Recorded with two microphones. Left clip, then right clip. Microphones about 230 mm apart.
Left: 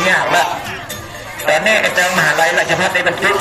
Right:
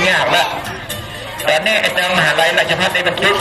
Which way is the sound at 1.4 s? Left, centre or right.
Right.